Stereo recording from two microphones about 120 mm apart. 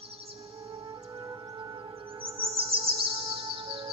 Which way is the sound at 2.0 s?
50° right (ahead or behind).